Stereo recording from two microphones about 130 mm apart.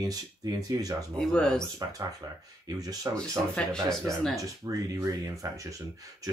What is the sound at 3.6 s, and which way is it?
Speech, 5° left (ahead or behind).